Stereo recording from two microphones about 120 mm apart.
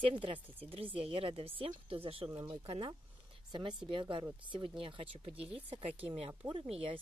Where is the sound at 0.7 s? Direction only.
50° right (ahead or behind).